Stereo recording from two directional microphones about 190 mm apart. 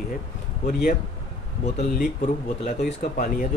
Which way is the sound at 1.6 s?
35° left (ahead or behind).